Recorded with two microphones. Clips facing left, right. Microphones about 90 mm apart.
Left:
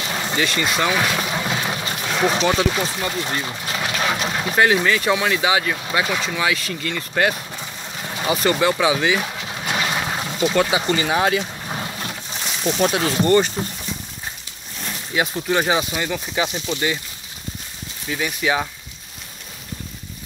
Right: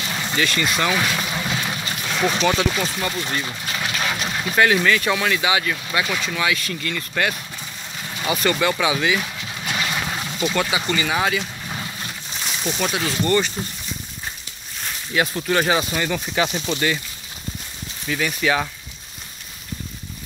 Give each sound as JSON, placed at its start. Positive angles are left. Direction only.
{"t": 0.1, "sound": "boat", "side_deg": 25}
{"t": 2.0, "sound": "speech", "side_deg": 25}
{"t": 3.3, "sound": "a sound", "side_deg": 30}
{"t": 4.0, "sound": "speech", "side_deg": 35}
{"t": 9.8, "sound": "a sound", "side_deg": 30}
{"t": 12.7, "sound": "speech", "side_deg": 40}
{"t": 13.2, "sound": "speech", "side_deg": 30}
{"t": 15.1, "sound": "speech", "side_deg": 20}
{"t": 18.0, "sound": "speech", "side_deg": 15}